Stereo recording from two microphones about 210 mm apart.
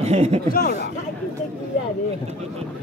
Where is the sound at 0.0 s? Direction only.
30° right (ahead or behind).